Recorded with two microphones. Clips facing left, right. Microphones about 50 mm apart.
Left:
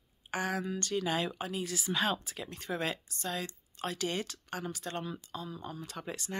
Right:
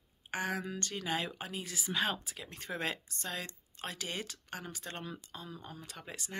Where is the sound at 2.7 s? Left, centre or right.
Right.